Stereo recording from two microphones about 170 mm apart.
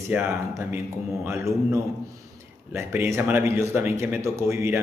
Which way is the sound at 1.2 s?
15° right (ahead or behind).